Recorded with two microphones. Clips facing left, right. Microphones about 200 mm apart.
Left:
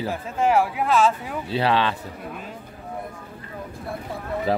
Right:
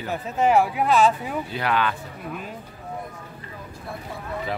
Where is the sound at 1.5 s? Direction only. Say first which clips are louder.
Left 4 dB; 30° left (ahead or behind).